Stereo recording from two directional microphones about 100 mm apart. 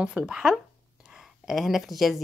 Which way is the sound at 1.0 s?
5° right (ahead or behind).